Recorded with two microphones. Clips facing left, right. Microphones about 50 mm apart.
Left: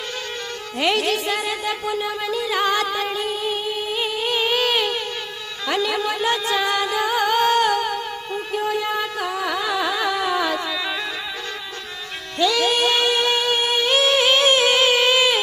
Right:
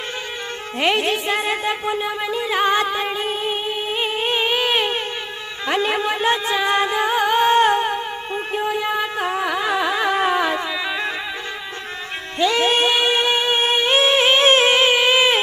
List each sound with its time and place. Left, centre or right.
0.7 s music: right
12.4 s music: right
15.0 s a sound: right